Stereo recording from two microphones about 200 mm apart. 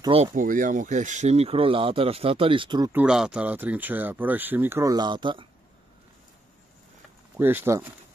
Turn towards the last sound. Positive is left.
turn(degrees=-10)  # may be behind; listen again after turning